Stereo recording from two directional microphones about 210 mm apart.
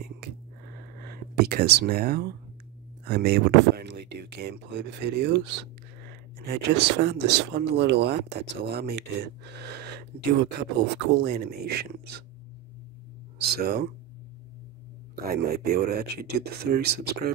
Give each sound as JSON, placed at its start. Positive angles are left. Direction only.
{"t": 0.9, "sound": "speech", "side_deg": -45}
{"t": 13.4, "sound": "speech", "side_deg": -50}
{"t": 15.2, "sound": "speech", "side_deg": -50}